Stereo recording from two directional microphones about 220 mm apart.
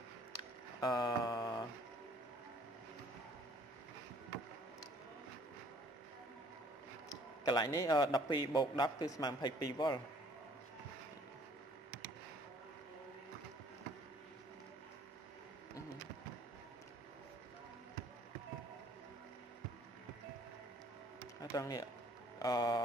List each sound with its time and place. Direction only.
0.4 s tick: 15° left (ahead or behind)
7.4 s a man's voice: 20° left (ahead or behind)
21.4 s a sound: 15° left (ahead or behind)